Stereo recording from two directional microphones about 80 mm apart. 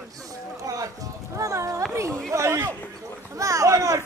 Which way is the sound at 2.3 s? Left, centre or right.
Right.